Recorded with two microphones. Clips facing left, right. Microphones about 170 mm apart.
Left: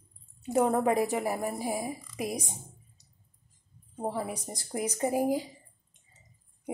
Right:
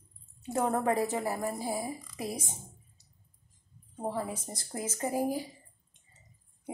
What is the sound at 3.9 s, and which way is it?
A woman's voice, 10° left (ahead or behind).